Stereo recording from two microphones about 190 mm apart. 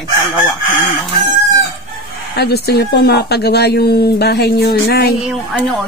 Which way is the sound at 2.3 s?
55° left (ahead or behind).